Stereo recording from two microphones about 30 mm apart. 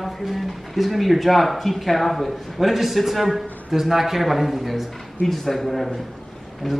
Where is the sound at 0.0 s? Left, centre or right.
Centre.